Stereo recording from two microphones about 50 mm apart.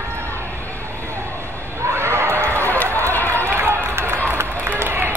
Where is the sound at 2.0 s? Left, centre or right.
Right.